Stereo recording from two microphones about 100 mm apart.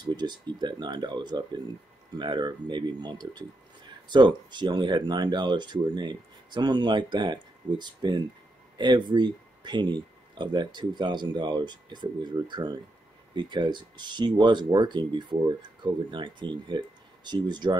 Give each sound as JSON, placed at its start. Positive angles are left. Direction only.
{"t": 0.0, "sound": "speech", "side_deg": -45}